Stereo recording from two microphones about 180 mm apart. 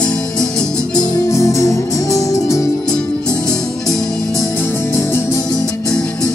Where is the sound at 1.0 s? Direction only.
15° left (ahead or behind).